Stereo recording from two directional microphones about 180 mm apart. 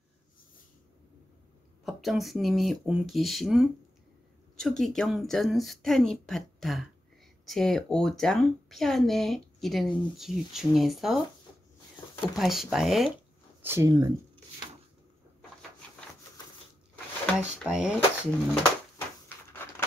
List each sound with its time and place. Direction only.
1.9 s speech: centre (ahead or behind)
12.4 s speech: centre (ahead or behind)
13.6 s speech: 15° right (ahead or behind)
17.4 s speech: 5° right (ahead or behind)
18.5 s a sound: 10° left (ahead or behind)